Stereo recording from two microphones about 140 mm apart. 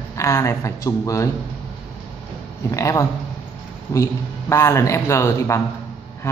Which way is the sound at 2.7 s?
20° left (ahead or behind).